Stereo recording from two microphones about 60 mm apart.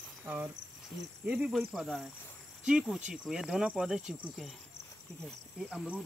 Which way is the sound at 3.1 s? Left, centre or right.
Centre.